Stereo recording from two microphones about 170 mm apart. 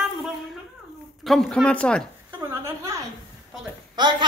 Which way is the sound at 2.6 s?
20° right (ahead or behind).